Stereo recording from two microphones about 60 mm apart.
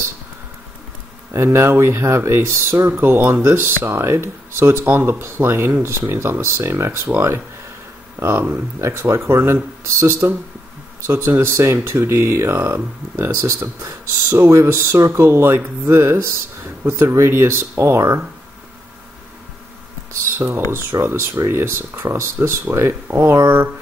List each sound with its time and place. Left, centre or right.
1.3 s speech: right
8.8 s speech: right
9.3 s speech: right
12.6 s speech: right
13.8 s speech: right
20.2 s speech: right